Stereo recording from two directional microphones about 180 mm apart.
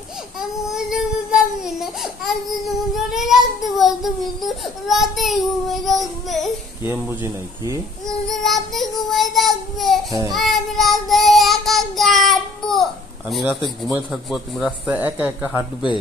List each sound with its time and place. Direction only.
0.4 s baby cry: centre (ahead or behind)
6.2 s speech: centre (ahead or behind)
6.8 s a man's voice: 15° right (ahead or behind)
8.3 s child singing: centre (ahead or behind)
13.9 s a man's voice: centre (ahead or behind)
15.4 s speech: 25° left (ahead or behind)